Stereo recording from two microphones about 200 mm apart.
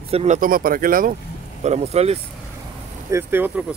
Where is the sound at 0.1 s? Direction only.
35° right (ahead or behind).